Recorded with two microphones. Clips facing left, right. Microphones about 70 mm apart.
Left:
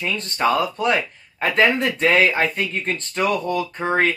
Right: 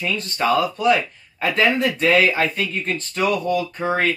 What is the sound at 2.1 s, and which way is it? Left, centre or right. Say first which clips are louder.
Speech: even; left.